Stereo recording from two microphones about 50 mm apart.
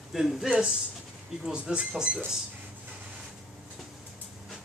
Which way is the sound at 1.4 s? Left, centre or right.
Centre.